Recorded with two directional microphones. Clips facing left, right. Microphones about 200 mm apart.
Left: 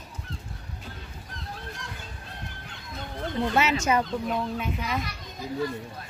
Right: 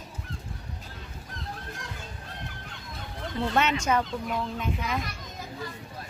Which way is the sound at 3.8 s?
10° left (ahead or behind).